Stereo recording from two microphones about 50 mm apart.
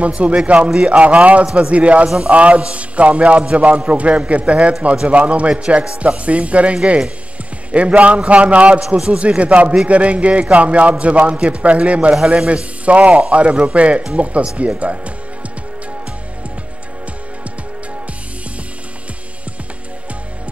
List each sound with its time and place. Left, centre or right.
0.0 s a man's voice: right
8.8 s a man's voice: centre
9.2 s a man's voice: right